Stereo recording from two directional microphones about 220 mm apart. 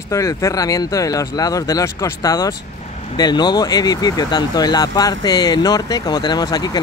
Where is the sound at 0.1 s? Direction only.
15° left (ahead or behind).